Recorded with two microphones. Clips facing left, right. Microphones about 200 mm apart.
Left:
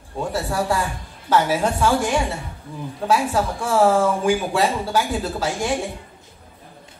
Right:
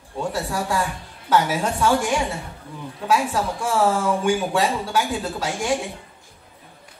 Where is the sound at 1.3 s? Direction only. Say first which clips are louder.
Left 2 dB; 30° left (ahead or behind).